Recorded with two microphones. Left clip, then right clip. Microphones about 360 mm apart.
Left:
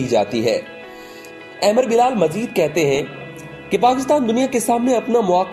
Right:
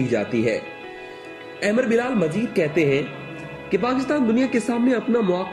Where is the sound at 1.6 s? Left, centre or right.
Left.